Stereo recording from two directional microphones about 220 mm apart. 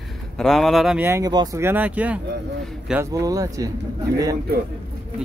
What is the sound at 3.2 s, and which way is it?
Speech, 15° right (ahead or behind).